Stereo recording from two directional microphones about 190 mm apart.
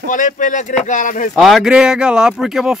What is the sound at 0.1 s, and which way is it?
Speech, 45° left (ahead or behind).